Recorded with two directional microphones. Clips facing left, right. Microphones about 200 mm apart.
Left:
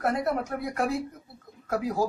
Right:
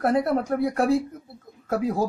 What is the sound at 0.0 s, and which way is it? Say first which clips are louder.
Speech: right 5 dB; 30° right (ahead or behind).